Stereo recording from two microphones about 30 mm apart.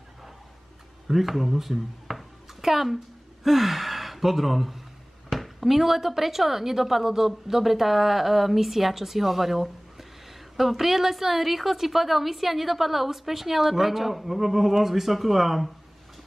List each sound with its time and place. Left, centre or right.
1.0 s a woman's voice: centre